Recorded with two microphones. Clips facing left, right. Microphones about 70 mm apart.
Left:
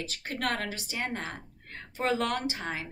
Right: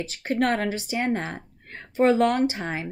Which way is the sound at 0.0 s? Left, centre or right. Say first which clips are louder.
Right 9 dB; right.